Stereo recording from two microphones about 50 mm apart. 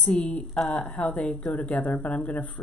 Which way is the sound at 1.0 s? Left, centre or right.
Left.